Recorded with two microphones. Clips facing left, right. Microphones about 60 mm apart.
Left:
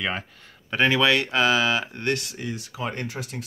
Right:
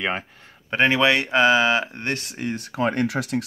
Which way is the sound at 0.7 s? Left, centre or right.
Right.